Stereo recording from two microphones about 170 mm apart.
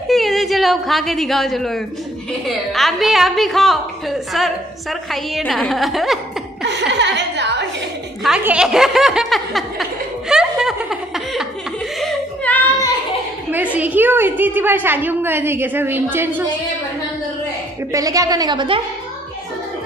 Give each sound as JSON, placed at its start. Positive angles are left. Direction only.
{"t": 0.1, "sound": "a woman's voice", "side_deg": 0}
{"t": 6.6, "sound": "a woman's voice", "side_deg": -90}
{"t": 8.2, "sound": "snicker", "side_deg": -5}
{"t": 12.0, "sound": "a sound", "side_deg": 5}
{"t": 13.7, "sound": "a woman's voice", "side_deg": -10}
{"t": 17.9, "sound": "a woman's voice", "side_deg": -20}